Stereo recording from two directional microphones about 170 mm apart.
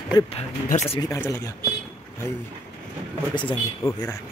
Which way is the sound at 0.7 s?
45° left (ahead or behind).